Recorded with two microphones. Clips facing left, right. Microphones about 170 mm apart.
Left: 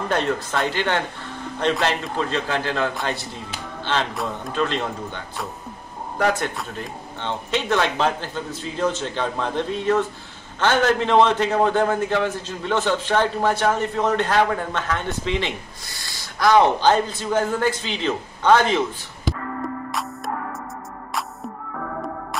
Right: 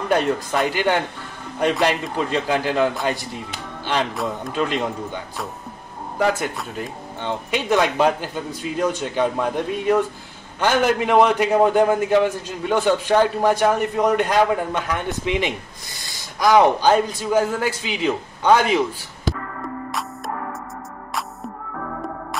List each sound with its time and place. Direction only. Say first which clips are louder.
0.1 s a man's voice: right 4 dB; 10° right (ahead or behind)
3.9 s a man's voice: right 2 dB; 10° right (ahead or behind)